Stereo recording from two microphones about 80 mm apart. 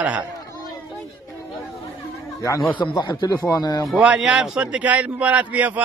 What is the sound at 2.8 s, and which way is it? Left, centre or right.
Speech, left.